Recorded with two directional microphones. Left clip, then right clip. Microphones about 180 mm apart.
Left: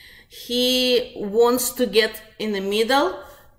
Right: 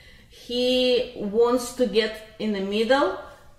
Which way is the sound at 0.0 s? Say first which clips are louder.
Left 6 dB; 10° left (ahead or behind).